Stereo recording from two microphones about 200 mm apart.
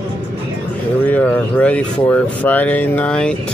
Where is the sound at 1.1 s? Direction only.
5° left (ahead or behind).